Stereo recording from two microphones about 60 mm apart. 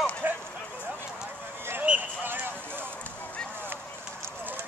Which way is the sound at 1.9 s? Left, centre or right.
Right.